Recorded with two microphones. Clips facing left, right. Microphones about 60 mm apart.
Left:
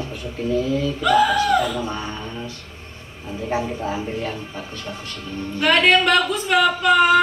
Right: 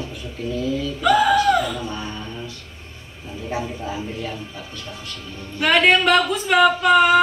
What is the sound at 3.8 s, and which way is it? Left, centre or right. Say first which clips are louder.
Speech: left 3 dB; left.